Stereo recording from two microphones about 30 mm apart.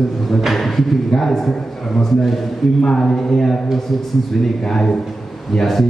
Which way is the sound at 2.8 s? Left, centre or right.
Centre.